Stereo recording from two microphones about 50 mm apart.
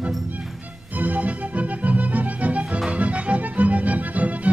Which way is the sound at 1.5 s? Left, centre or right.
Right.